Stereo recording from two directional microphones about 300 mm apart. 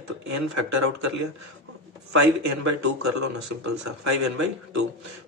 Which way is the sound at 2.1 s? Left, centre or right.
Right.